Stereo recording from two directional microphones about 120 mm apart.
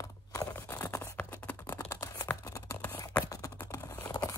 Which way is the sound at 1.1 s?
10° left (ahead or behind).